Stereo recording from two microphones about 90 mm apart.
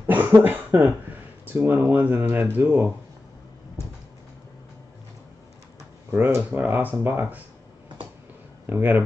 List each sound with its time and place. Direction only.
0.0 s cough: 20° right (ahead or behind)
0.4 s speech: 20° right (ahead or behind)
6.1 s speech: 30° right (ahead or behind)
8.6 s speech: 20° right (ahead or behind)